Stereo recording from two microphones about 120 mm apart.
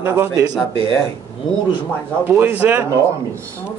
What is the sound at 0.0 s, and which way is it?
Speech, 20° right (ahead or behind).